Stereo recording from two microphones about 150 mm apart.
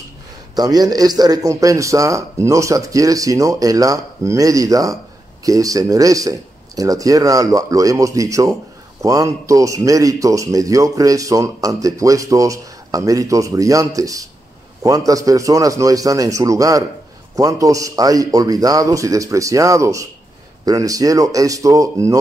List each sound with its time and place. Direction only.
0.6 s a man's voice: 25° right (ahead or behind)